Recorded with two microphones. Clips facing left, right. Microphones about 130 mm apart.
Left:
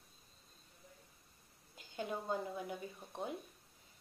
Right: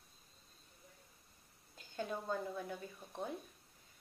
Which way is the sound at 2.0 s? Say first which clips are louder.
Left 1 dB; 15° left (ahead or behind).